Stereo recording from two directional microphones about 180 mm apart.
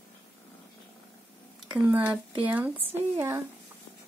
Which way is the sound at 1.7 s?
10° right (ahead or behind).